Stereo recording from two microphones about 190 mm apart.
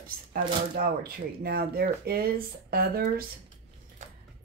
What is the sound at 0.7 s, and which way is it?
Speech, 50° right (ahead or behind).